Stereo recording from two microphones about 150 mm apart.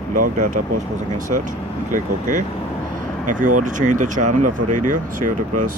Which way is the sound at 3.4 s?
60° right (ahead or behind).